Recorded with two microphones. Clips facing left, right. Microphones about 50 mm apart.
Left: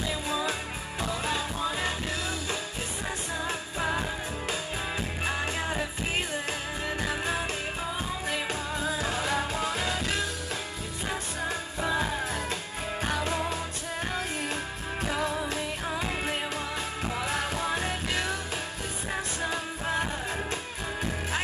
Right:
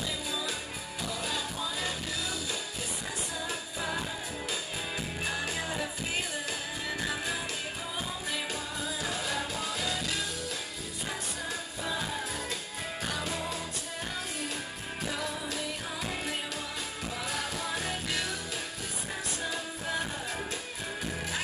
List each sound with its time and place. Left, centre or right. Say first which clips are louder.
0.3 s music: left 5 dB; left
3.4 s music: left 6 dB; left
5.2 s music: left 4 dB; left
7.1 s music: left 4 dB; left
11.4 s music: left 7 dB; left
15.1 s music: left 5 dB; left
19.4 s music: left 3 dB; left